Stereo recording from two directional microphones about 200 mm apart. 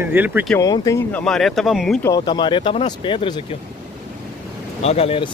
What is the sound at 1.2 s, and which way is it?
Speech, centre (ahead or behind).